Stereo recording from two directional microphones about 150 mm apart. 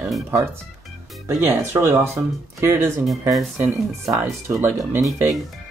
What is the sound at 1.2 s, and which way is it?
Speech, 15° right (ahead or behind).